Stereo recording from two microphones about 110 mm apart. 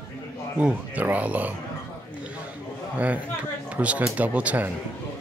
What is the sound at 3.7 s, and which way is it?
Speech, 10° right (ahead or behind).